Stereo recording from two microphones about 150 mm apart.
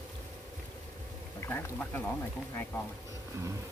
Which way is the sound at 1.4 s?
15° left (ahead or behind).